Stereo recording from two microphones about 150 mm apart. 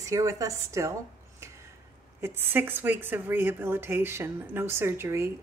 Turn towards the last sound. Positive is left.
turn(degrees=-15)  # may be behind; listen again after turning